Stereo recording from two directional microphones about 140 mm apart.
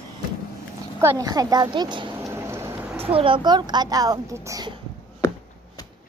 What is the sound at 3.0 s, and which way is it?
A child's voice, 40° right (ahead or behind).